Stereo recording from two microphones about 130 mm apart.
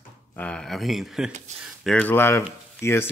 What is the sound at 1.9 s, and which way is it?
Speech, 15° left (ahead or behind).